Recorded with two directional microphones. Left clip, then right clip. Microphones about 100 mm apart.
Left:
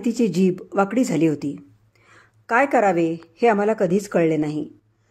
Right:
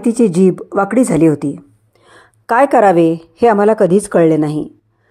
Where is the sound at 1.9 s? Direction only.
35° right (ahead or behind); by 3.2 s 50° right (ahead or behind).